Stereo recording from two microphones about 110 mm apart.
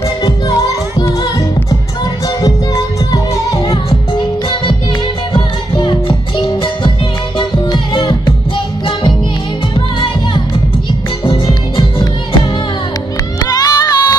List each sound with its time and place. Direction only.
0.2 s music: 35° left (ahead or behind)
2.2 s music: 35° left (ahead or behind)
3.5 s music: 55° left (ahead or behind)
5.3 s music: 45° left (ahead or behind)